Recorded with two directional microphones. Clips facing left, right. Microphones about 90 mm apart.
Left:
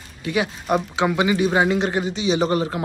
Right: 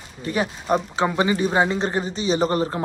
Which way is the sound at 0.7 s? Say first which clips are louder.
Left 1 dB; 35° right (ahead or behind).